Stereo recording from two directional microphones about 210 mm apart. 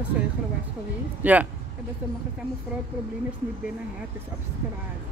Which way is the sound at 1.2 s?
10° right (ahead or behind).